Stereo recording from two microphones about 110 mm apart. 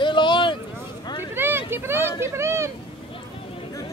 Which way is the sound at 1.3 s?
20° right (ahead or behind).